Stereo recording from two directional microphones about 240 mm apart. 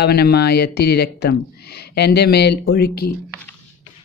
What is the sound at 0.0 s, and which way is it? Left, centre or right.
Speech, left.